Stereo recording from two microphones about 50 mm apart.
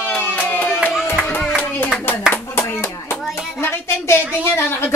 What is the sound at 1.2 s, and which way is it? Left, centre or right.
Hands, left.